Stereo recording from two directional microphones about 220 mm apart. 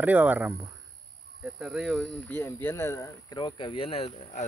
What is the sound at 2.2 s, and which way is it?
Speech, 10° left (ahead or behind).